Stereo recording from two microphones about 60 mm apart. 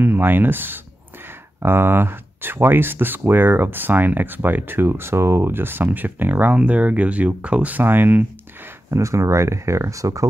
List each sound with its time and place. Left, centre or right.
0.0 s speech: right
6.5 s speech: right
7.8 s speech: right
8.9 s speech: right